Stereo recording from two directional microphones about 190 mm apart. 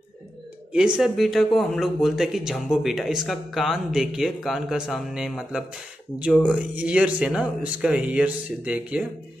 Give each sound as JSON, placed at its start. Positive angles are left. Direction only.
{"t": 0.7, "sound": "speech", "side_deg": -5}